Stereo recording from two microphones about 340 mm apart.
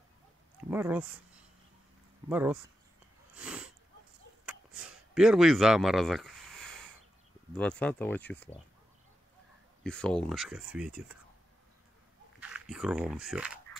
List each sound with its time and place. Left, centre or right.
0.7 s speech: centre
2.2 s speech: centre
3.3 s sniff: centre
4.5 s a sound: centre
7.5 s speech: centre
9.8 s speech: centre
12.4 s speech: centre